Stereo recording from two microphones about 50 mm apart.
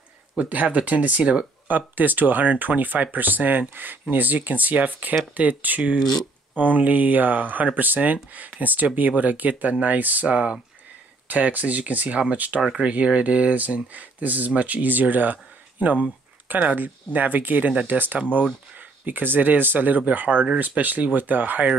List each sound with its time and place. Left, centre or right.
0.4 s speech: right
1.7 s speech: right
10.2 s speech: right
11.2 s speech: right